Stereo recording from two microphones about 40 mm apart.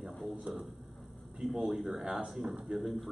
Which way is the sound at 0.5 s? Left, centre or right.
Right.